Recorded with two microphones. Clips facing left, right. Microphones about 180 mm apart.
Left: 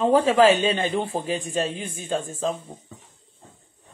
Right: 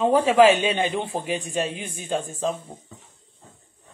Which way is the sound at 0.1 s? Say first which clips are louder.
Even; 15° right (ahead or behind).